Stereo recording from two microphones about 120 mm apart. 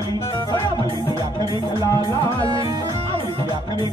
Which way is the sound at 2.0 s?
35° right (ahead or behind).